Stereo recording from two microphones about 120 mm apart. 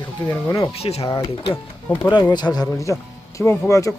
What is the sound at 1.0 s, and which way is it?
Speech, 35° left (ahead or behind).